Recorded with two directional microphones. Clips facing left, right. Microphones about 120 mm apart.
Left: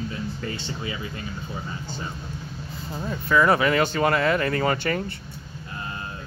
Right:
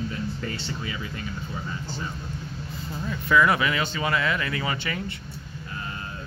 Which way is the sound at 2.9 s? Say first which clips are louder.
Even; 35° left (ahead or behind).